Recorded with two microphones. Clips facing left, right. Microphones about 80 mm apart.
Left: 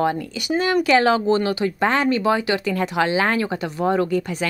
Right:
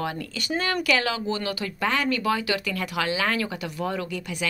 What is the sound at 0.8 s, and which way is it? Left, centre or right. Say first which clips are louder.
Speech: left 8 dB; left.